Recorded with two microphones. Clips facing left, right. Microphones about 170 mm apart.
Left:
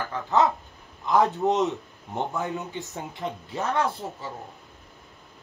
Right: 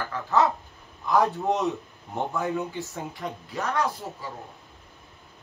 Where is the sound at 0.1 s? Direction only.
20° left (ahead or behind).